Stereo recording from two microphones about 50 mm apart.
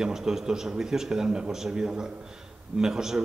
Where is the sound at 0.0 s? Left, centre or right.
Centre.